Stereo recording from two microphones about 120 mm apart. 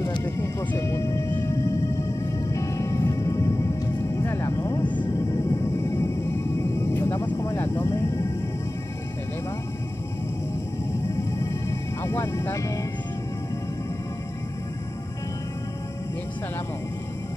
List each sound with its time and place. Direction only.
0.2 s music: 25° left (ahead or behind); by 5.1 s 40° left (ahead or behind)
5.5 s music: 25° left (ahead or behind)
7.3 s vehicle: 25° left (ahead or behind)
12.0 s music: 20° left (ahead or behind)